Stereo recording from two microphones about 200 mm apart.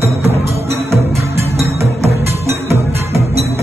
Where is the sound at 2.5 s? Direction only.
30° right (ahead or behind).